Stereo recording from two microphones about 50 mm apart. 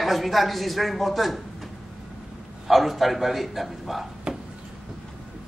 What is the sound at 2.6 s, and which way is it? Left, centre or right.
A man's voice, centre.